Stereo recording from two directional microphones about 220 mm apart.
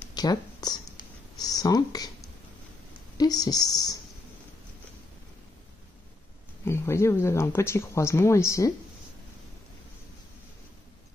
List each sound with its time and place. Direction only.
0.0 s a sound: 20° left (ahead or behind)
1.4 s speech: 15° left (ahead or behind)
3.2 s speech: 15° left (ahead or behind)
6.6 s speech: 10° left (ahead or behind)